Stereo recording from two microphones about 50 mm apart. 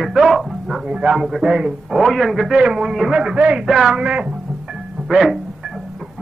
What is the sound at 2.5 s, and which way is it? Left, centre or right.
Speech, centre.